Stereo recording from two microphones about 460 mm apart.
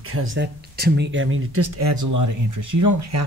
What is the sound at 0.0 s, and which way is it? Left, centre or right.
Speech, right.